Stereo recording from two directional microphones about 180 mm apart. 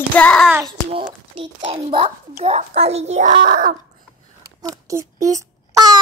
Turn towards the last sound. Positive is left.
turn(degrees=-20)  # may be behind; listen again after turning